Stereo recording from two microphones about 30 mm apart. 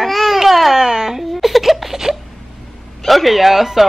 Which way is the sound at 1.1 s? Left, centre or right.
Centre.